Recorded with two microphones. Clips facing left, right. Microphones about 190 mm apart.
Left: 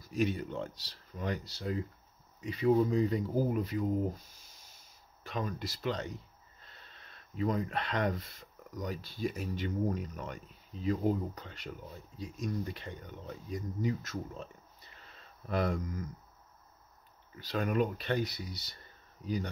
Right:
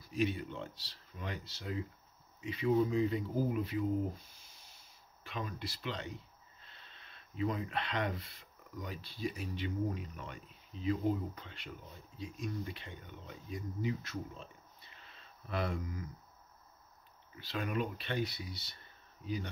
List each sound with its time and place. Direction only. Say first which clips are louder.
0.0 s speech: left 2 dB; 45° left (ahead or behind)
5.2 s speech: left 5 dB; 40° left (ahead or behind)
17.4 s speech: left 6 dB; 45° left (ahead or behind)